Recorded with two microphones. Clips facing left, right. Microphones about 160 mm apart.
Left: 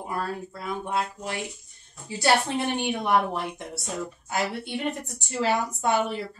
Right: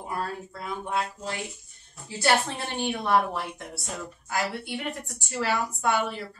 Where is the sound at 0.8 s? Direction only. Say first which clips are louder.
Even; 20° left (ahead or behind).